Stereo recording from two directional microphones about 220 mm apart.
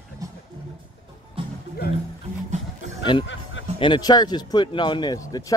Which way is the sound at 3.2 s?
60° left (ahead or behind).